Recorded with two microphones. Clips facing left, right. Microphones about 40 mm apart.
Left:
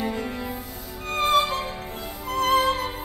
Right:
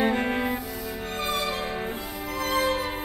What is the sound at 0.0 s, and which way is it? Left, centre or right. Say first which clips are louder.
Music: right 5 dB; right.